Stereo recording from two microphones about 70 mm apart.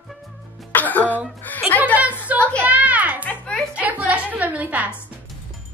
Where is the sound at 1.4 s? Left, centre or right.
Left.